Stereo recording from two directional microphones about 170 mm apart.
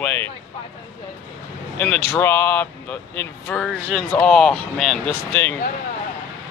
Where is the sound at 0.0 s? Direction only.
10° left (ahead or behind).